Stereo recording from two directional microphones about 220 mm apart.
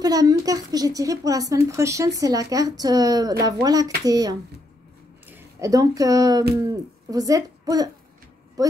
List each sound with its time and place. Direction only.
0.0 s a child's voice: 15° right (ahead or behind)